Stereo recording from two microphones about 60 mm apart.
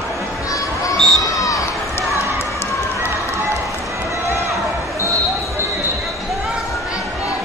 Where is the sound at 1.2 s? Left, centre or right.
Left.